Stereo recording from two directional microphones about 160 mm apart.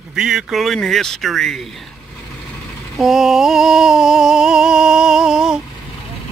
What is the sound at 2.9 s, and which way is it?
Speech, centre (ahead or behind).